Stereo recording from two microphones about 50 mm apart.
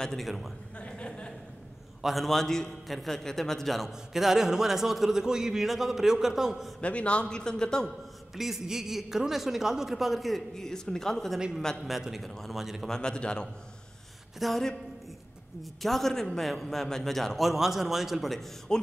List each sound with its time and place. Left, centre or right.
0.0 s a man's voice: centre
0.7 s a sound: left
2.0 s a man's voice: centre
6.8 s a man's voice: left
8.4 s a man's voice: centre
10.5 s a man's voice: centre
11.8 s a man's voice: centre
12.8 s a man's voice: centre
14.4 s a man's voice: centre
15.8 s a man's voice: centre
18.7 s a man's voice: centre